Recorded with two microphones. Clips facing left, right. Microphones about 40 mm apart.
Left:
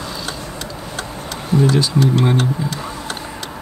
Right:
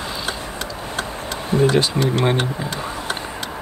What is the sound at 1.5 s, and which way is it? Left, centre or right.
Speech, right.